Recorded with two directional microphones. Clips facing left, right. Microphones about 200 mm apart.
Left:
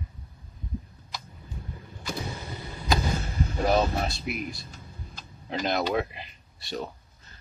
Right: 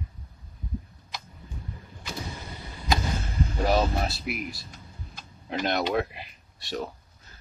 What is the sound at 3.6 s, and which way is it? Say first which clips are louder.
Speech: left 1 dB; 5° right (ahead or behind).